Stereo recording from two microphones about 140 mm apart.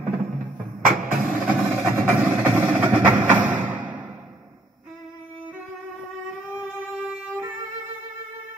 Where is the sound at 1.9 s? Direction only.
15° right (ahead or behind).